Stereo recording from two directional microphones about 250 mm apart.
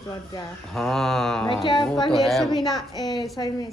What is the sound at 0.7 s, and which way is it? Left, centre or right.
A woman's voice, centre.